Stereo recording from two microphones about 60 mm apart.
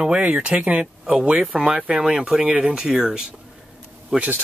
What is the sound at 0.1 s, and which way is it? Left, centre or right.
Speech, centre.